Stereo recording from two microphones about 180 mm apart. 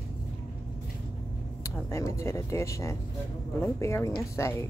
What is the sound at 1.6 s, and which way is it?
Speech, 15° left (ahead or behind).